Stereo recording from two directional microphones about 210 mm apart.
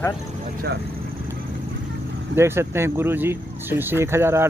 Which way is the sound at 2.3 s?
10° right (ahead or behind).